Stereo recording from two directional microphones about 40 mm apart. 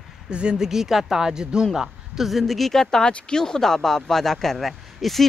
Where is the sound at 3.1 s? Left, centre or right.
Left.